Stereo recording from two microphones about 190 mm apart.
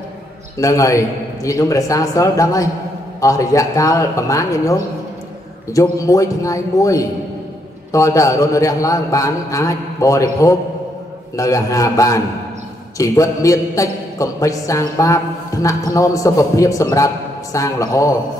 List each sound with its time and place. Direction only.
0.6 s a man's voice: 15° left (ahead or behind)